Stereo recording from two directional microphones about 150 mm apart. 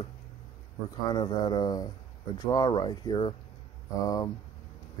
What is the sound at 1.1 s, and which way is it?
Speech, 30° left (ahead or behind).